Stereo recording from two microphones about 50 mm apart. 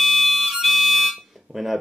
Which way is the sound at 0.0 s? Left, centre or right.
Centre.